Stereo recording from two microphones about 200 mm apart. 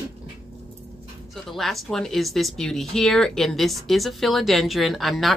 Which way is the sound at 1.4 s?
Centre (ahead or behind).